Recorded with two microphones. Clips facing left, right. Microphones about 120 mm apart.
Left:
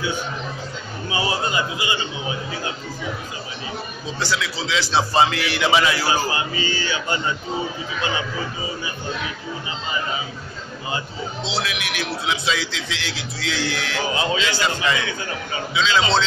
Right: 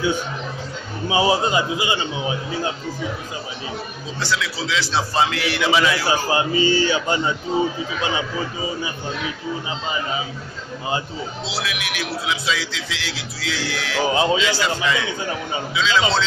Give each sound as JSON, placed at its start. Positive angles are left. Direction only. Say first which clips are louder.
{"t": 1.0, "sound": "a man's voice", "louder": "right 6 dB", "side_deg": -20}
{"t": 4.2, "sound": "a man's voice", "louder": "right 1 dB", "side_deg": 0}
{"t": 6.2, "sound": "a sound", "louder": "right 6 dB", "side_deg": -30}
{"t": 11.4, "sound": "a man's voice", "louder": "left 3 dB", "side_deg": -5}
{"t": 14.0, "sound": "a man's voice", "louder": "right 6 dB", "side_deg": -30}
{"t": 14.3, "sound": "a man's voice", "louder": "right 2 dB", "side_deg": -5}